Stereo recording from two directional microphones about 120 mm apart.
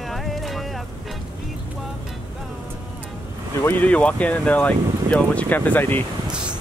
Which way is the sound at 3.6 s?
15° left (ahead or behind).